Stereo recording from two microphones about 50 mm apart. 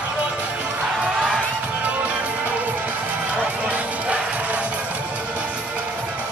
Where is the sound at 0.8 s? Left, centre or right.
Centre.